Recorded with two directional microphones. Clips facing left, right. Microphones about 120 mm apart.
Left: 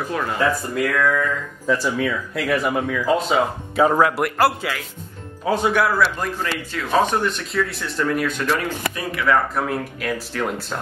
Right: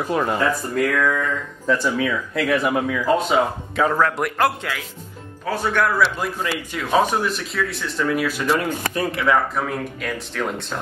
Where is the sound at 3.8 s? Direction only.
15° left (ahead or behind).